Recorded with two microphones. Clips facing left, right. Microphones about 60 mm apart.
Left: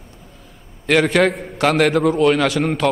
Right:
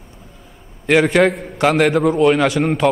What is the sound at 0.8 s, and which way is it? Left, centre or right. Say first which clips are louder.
A man's voice: right 2 dB; centre.